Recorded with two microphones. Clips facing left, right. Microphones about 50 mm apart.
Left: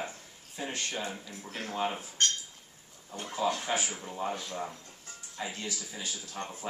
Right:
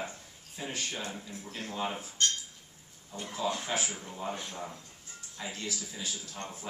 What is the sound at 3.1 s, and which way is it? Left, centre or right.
Speech, left.